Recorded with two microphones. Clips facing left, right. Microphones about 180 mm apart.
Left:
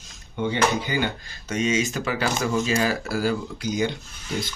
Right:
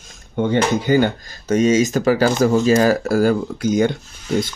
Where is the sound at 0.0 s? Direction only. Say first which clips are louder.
Right 6 dB; 50° right (ahead or behind).